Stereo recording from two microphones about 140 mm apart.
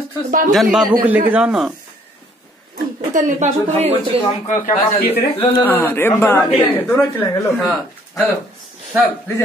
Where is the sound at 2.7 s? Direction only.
65° right (ahead or behind).